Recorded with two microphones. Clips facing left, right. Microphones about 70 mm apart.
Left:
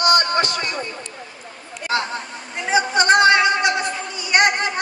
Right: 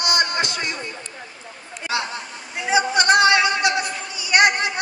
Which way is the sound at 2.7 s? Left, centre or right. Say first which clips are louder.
Left 1 dB; left.